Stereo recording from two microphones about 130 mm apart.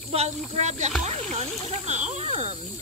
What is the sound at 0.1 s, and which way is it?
Speech, 55° right (ahead or behind).